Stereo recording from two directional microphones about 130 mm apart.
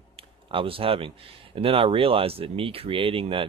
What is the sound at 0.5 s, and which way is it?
Speech, 45° right (ahead or behind).